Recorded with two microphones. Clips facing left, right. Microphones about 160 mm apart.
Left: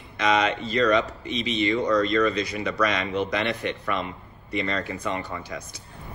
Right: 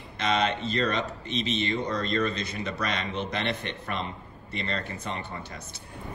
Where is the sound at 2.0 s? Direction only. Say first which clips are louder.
Left 6 dB; 55° right (ahead or behind).